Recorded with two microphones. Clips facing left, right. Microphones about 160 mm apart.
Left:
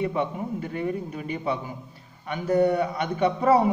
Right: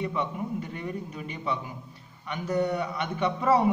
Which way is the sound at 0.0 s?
50° left (ahead or behind).